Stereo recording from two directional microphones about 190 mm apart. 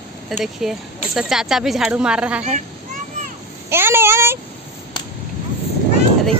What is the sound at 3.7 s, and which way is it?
Speech, 10° right (ahead or behind).